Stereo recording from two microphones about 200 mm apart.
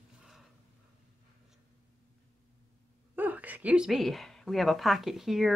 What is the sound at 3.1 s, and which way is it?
A woman's voice, 10° right (ahead or behind).